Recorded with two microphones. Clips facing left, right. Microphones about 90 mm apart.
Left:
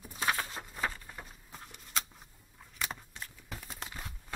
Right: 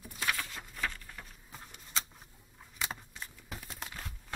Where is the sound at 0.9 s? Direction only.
15° left (ahead or behind).